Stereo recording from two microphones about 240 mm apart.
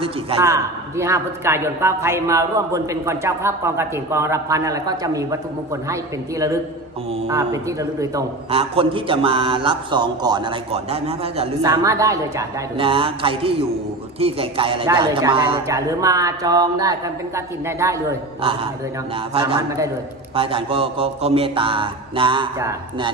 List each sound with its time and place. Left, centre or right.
0.4 s a man's voice: centre
11.7 s a man's voice: centre
18.4 s a man's voice: right